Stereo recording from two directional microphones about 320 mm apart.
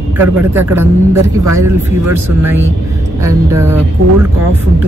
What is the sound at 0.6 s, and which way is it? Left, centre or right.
Speech, centre.